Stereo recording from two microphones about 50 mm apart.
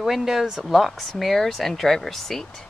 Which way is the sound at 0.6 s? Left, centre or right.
Centre.